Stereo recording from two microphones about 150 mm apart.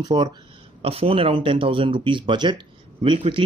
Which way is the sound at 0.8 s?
40° right (ahead or behind).